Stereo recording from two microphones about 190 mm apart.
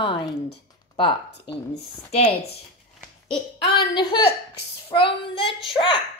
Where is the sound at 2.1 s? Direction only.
30° left (ahead or behind).